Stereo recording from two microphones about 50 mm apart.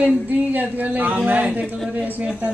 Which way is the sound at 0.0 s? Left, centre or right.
Right.